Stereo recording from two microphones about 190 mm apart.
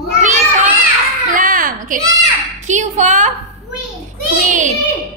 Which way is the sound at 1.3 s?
45° right (ahead or behind).